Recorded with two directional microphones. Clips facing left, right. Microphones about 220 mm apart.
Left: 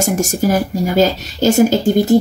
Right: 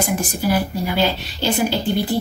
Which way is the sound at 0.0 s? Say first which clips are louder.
Left 5 dB; 45° left (ahead or behind).